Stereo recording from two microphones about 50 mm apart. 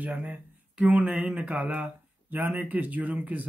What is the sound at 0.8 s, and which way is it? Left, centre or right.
Speech, right.